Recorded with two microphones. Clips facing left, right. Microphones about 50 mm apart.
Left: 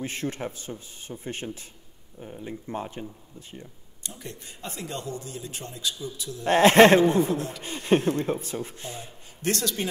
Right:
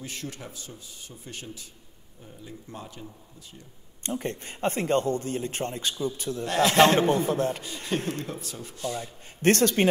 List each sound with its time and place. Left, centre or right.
0.0 s speech: left
4.0 s a man's voice: right
6.4 s speech: left
7.2 s a man's voice: right
7.6 s speech: left
9.4 s speech: right